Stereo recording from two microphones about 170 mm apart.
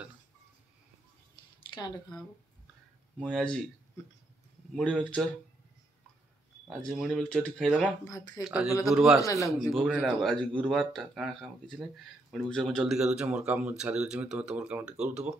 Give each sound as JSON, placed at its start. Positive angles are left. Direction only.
{"t": 1.7, "sound": "speech", "side_deg": 25}
{"t": 3.2, "sound": "speech", "side_deg": 5}
{"t": 4.7, "sound": "speech", "side_deg": 5}
{"t": 6.7, "sound": "speech", "side_deg": -5}
{"t": 8.0, "sound": "speech", "side_deg": 20}
{"t": 8.5, "sound": "speech", "side_deg": -5}
{"t": 9.2, "sound": "speech", "side_deg": 20}
{"t": 9.7, "sound": "a man's voice", "side_deg": -5}